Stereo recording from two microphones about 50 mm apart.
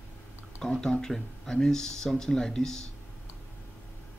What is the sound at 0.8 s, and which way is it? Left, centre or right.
Speech, centre.